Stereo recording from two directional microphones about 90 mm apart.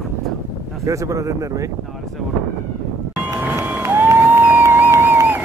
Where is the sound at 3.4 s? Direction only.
15° right (ahead or behind).